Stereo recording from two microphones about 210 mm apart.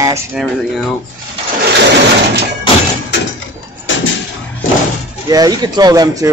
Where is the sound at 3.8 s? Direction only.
65° left (ahead or behind).